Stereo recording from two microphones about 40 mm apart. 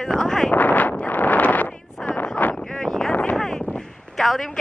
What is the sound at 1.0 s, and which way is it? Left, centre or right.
Wind noise, left.